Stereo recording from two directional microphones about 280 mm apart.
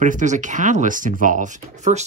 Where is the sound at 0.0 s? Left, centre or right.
Right.